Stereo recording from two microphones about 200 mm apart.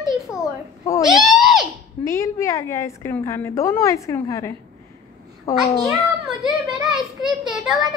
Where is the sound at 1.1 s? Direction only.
Centre (ahead or behind).